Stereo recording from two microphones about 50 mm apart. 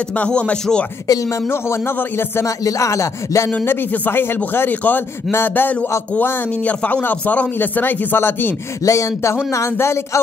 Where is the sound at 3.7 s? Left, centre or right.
Left.